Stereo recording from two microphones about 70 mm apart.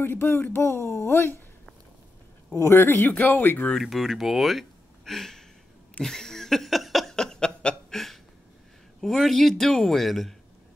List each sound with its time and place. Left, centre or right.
0.0 s speech: left
2.5 s speech: left
3.8 s speech: centre
6.0 s a sound: centre
9.0 s a man's voice: centre